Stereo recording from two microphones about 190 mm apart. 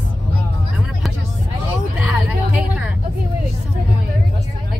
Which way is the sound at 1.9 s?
5° right (ahead or behind).